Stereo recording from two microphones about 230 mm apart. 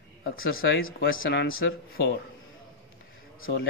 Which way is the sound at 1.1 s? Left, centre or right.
Left.